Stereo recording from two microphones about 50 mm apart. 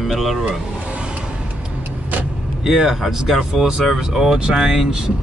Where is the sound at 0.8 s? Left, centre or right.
Right.